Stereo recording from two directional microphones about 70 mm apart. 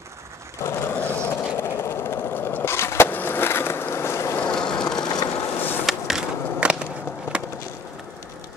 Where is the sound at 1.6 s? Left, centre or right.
Left.